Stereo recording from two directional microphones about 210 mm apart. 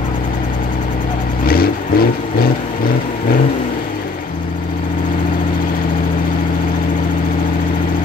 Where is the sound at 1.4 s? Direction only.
45° left (ahead or behind).